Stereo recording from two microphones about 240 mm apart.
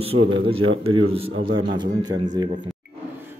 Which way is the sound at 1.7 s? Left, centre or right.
Centre.